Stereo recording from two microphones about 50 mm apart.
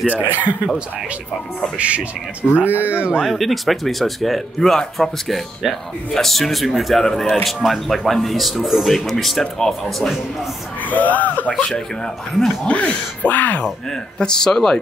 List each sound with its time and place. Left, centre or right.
0.2 s speech: right
1.8 s speech: right
3.3 s speech: centre
7.0 s speech: centre
10.8 s speech: left
12.6 s speech: left
13.8 s speech: centre